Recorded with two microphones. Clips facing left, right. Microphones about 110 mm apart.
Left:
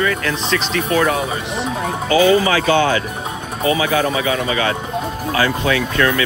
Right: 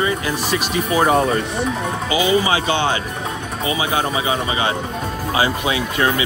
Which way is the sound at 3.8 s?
25° right (ahead or behind).